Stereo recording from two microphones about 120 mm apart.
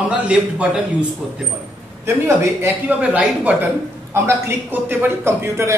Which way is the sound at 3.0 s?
10° right (ahead or behind).